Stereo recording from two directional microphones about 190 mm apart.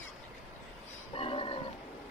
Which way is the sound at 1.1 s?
30° left (ahead or behind).